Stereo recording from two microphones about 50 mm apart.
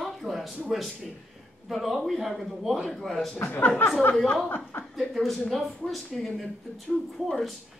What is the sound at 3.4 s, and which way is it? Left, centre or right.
Speech, left.